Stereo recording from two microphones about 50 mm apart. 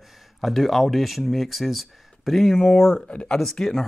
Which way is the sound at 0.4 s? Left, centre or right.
Centre.